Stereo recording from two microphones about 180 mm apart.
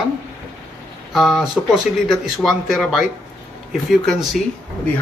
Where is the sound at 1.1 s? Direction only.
Centre (ahead or behind).